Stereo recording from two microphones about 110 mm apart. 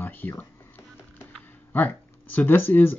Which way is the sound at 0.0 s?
20° left (ahead or behind).